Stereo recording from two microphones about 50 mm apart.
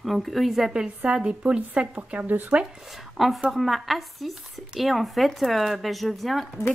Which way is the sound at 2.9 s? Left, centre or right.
Centre.